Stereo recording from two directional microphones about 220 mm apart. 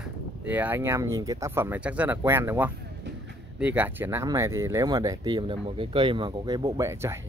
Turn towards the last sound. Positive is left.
turn(degrees=-15)  # may be behind; listen again after turning